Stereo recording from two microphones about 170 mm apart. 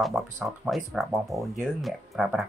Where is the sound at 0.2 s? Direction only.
Centre (ahead or behind).